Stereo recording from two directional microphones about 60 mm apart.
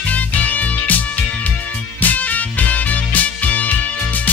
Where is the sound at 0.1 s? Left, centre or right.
Left.